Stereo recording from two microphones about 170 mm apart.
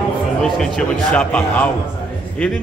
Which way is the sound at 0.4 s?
5° left (ahead or behind).